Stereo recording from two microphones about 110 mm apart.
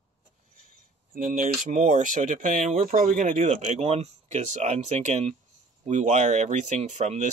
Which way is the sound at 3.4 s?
85° right.